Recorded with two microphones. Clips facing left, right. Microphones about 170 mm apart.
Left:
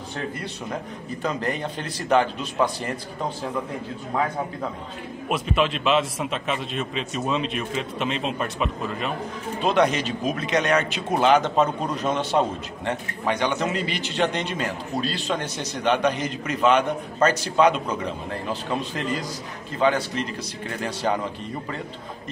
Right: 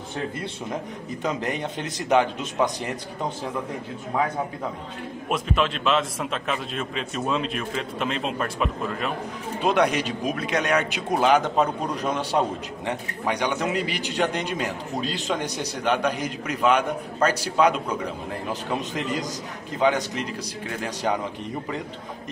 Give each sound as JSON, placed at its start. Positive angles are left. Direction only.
{"t": 1.2, "sound": "a man's voice", "side_deg": -20}
{"t": 5.3, "sound": "a man's voice", "side_deg": 5}
{"t": 9.6, "sound": "a man's voice", "side_deg": -15}